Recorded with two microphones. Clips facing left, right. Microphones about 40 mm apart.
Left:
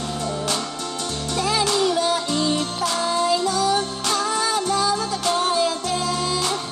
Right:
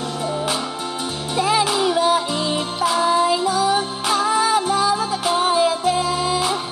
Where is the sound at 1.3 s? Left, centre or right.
Centre.